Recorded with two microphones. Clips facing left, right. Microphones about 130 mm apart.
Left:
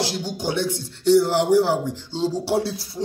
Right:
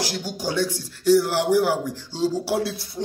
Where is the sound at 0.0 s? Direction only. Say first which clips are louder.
Left 2 dB; 25° left (ahead or behind).